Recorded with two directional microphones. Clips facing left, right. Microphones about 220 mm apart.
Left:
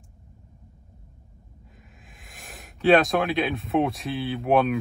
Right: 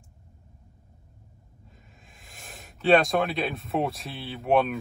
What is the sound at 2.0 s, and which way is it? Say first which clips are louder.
Speech: left 1 dB; centre (ahead or behind).